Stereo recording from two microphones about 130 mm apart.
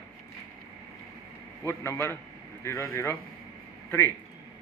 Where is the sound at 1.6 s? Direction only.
20° left (ahead or behind).